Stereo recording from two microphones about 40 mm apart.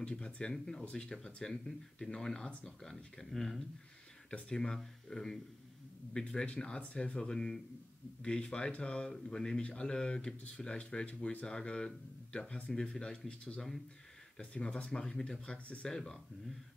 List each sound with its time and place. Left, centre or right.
0.0 s speech: left; by 3.6 s centre
4.3 s speech: left
5.1 s speech: centre
6.2 s speech: left
7.2 s speech: centre
9.1 s speech: centre
9.6 s speech: left
12.9 s speech: left
14.4 s speech: left
15.9 s speech: centre